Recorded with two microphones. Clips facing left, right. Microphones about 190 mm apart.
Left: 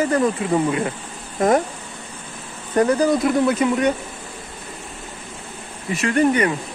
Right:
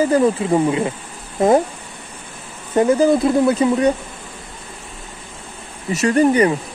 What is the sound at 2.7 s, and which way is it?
Speech, 25° right (ahead or behind).